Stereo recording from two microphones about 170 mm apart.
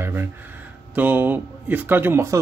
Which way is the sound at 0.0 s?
15° right (ahead or behind).